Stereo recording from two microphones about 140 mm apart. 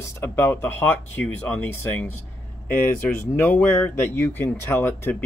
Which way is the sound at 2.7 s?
15° left (ahead or behind).